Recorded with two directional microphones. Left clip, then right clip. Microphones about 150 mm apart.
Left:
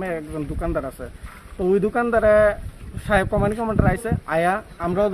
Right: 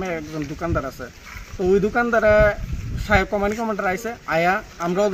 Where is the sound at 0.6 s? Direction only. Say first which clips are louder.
Right 1 dB; 10° left (ahead or behind).